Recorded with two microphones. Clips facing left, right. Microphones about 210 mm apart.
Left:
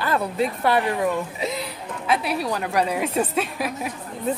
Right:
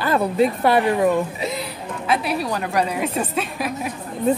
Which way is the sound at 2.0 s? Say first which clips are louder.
Right 1 dB; centre (ahead or behind).